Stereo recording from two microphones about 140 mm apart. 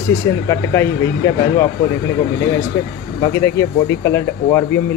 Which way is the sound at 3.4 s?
20° left (ahead or behind).